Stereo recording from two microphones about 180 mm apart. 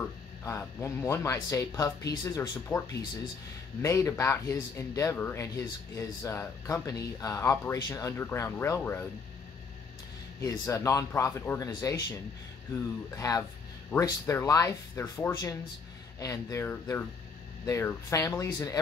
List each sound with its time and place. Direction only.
0.4 s speech: 15° left (ahead or behind)
3.8 s speech: 20° left (ahead or behind)
10.4 s speech: 15° left (ahead or behind)